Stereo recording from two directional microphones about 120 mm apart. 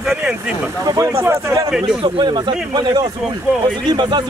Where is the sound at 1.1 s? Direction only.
20° right (ahead or behind).